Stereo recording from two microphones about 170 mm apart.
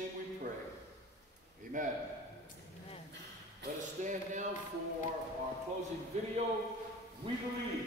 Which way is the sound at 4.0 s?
45° right (ahead or behind).